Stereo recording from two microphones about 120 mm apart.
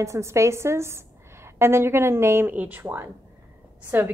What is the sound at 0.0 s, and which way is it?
A woman's voice, 25° right (ahead or behind).